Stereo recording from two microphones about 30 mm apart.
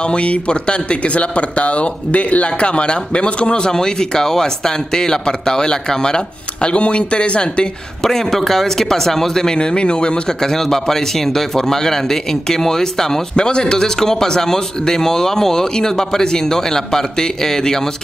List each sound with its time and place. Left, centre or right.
0.0 s a man's voice: left
6.7 s a man's voice: left
8.0 s speech: centre
9.6 s a man's voice: left
10.4 s speech: centre
13.4 s a man's voice: left